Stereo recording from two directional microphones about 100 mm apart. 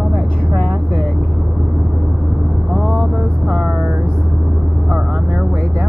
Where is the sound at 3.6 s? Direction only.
15° right (ahead or behind).